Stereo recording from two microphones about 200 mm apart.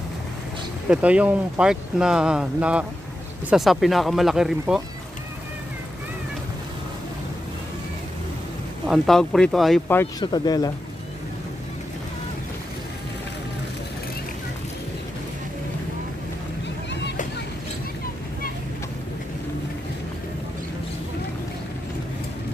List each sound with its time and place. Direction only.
0.8 s speech: 5° right (ahead or behind)
8.8 s speech: centre (ahead or behind)
10.2 s speech: 20° left (ahead or behind)